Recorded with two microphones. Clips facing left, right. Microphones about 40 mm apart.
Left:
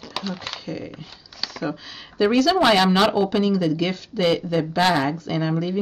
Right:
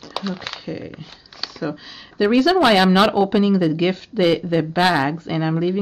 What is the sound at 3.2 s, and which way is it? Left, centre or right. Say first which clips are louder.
Speech: right 3 dB; right.